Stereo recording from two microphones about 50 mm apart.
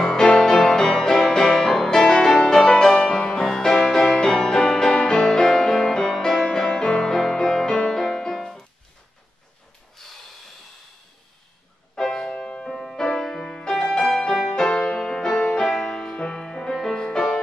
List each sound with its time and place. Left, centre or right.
0.0 s music: centre
10.0 s snort: centre
11.9 s music: centre
12.2 s music: centre
14.5 s music: centre